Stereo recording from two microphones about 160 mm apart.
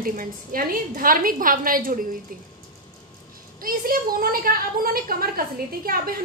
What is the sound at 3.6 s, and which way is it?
A woman's voice, 65° right (ahead or behind).